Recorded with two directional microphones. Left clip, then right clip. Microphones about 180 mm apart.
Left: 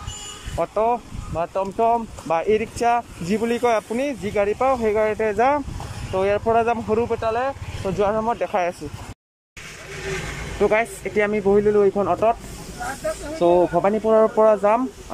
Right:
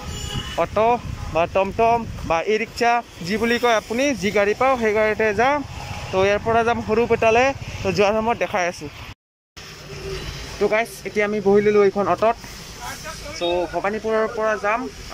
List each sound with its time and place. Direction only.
0.6 s speech: centre (ahead or behind)
7.1 s speech: 10° right (ahead or behind)
8.4 s speech: centre (ahead or behind)
10.6 s speech: centre (ahead or behind)
13.4 s speech: 25° left (ahead or behind)